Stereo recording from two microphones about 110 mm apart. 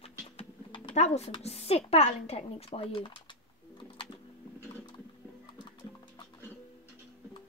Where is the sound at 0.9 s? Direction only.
85° left.